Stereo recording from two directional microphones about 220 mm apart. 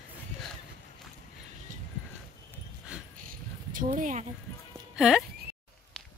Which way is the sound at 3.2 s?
40° right (ahead or behind).